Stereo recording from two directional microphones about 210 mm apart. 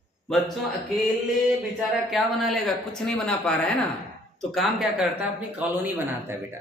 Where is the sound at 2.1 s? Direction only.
Centre (ahead or behind).